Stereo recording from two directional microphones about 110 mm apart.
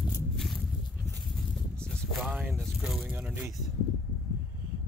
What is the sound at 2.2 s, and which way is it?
Speech, 5° right (ahead or behind).